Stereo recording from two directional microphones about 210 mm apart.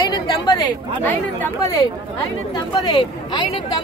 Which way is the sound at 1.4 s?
15° left (ahead or behind).